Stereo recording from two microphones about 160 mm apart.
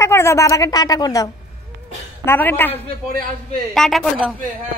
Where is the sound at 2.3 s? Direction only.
10° left (ahead or behind).